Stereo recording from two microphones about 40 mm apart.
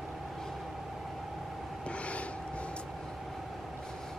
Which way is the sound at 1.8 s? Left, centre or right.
Left.